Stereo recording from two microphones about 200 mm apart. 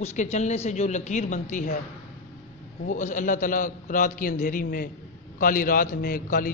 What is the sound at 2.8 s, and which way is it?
A man's voice, 40° left (ahead or behind).